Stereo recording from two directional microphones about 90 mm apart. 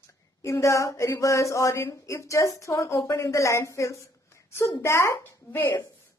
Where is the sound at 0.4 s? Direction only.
35° left (ahead or behind).